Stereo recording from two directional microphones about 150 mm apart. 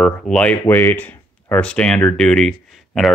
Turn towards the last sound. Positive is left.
turn(degrees=5)  # may be behind; listen again after turning